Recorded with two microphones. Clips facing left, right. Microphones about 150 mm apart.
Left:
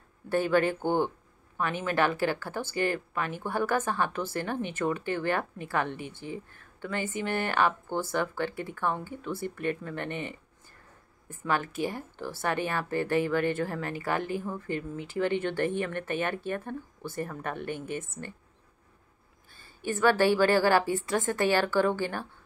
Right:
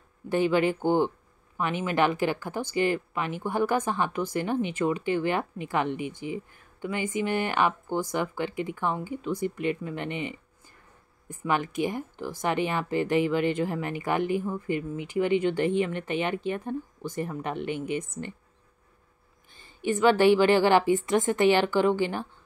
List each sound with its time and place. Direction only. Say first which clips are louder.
0.3 s speech: right 2 dB; 15° right (ahead or behind)
19.8 s speech: right 3 dB; 15° right (ahead or behind)